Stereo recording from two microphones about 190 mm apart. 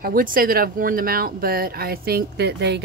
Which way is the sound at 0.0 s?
50° right (ahead or behind).